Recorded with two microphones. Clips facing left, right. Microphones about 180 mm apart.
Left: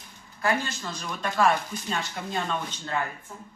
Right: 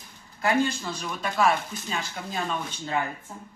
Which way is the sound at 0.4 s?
20° right (ahead or behind).